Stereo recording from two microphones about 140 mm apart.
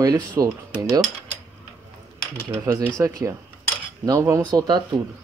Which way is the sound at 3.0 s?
25° right (ahead or behind).